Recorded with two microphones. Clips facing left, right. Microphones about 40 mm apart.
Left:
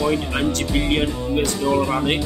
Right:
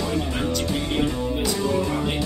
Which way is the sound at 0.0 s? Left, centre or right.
Left.